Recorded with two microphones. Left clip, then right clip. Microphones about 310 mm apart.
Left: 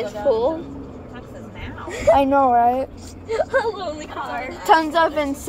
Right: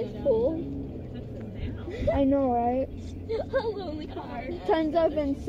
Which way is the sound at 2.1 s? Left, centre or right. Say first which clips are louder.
Left 10 dB; left.